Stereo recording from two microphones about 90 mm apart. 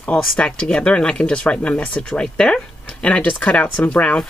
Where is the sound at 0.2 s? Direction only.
10° left (ahead or behind).